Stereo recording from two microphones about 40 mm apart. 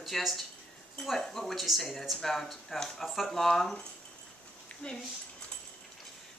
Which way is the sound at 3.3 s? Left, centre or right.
Centre.